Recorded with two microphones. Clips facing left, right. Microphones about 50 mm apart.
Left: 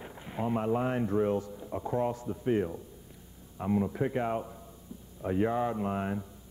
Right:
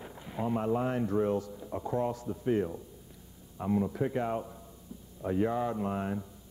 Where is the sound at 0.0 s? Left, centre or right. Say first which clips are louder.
Left 1 dB; left.